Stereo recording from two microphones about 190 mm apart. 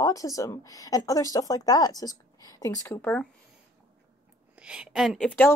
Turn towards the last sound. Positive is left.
turn(degrees=10)  # may be behind; listen again after turning